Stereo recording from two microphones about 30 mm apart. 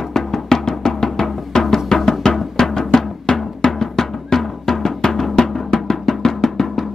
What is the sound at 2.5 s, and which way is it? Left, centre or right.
Drum, left.